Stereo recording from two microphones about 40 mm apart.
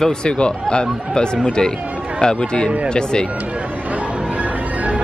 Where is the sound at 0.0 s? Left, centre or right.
Left.